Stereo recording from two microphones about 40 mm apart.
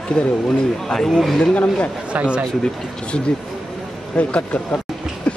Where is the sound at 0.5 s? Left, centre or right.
Centre.